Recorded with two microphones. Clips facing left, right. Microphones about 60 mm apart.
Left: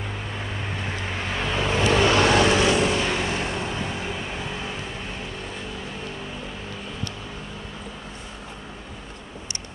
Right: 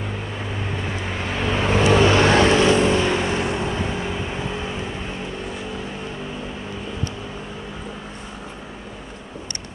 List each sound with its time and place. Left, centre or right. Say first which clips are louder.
0.8 s vehicle: right 2 dB; centre
1.6 s vehicle: right 4 dB; right